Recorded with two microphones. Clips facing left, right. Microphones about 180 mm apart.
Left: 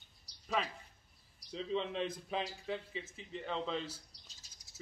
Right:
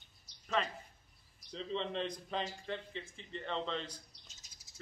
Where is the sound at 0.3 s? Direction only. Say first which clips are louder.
Left 1 dB; 35° left (ahead or behind).